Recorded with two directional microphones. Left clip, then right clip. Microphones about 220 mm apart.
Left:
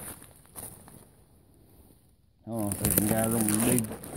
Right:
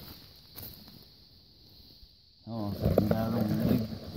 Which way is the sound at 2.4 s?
40° right (ahead or behind).